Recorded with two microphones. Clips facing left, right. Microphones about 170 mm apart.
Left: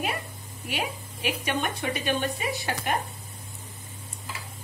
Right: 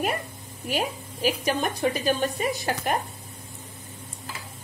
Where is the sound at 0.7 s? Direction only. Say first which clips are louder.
Right 4 dB; 40° right (ahead or behind).